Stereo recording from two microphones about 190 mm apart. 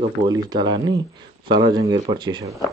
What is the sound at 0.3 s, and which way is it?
Speech, 20° right (ahead or behind).